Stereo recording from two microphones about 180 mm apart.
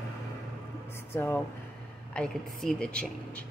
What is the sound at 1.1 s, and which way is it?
A woman's voice, 10° left (ahead or behind).